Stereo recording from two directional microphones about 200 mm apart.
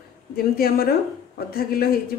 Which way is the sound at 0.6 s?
50° left (ahead or behind).